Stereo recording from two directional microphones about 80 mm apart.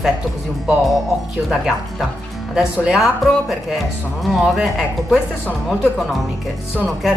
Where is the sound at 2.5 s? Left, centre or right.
Centre.